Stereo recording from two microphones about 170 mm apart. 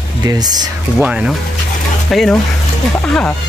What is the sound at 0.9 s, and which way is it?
Speech, 5° right (ahead or behind).